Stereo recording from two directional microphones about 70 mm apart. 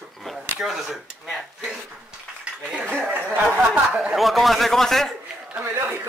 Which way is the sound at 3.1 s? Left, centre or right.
Centre.